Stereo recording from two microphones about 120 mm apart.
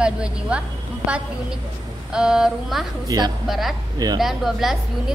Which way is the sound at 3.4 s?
Centre (ahead or behind).